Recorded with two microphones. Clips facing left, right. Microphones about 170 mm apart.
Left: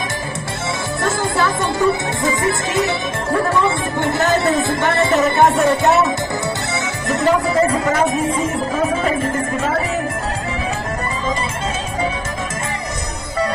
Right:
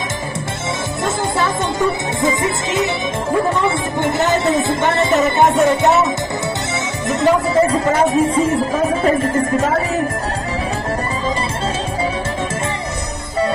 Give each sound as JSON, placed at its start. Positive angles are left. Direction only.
{"t": 1.0, "sound": "music", "side_deg": -20}
{"t": 7.1, "sound": "speech", "side_deg": -30}